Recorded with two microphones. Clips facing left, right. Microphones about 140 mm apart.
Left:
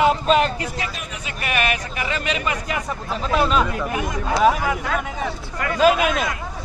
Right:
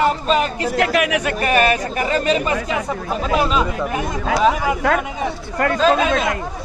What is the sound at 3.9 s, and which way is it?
Speech, 30° right (ahead or behind).